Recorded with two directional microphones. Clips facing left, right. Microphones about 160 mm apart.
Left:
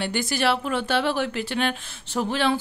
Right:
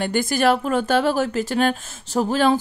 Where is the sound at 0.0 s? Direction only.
50° right (ahead or behind).